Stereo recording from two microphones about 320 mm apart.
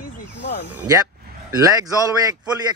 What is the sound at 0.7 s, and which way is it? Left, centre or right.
A man's voice, centre.